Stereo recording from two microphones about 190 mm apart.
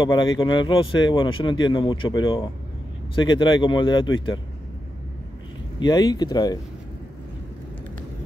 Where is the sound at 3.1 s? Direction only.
25° left (ahead or behind).